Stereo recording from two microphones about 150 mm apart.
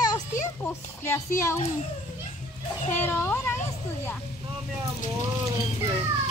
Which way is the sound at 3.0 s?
15° left (ahead or behind).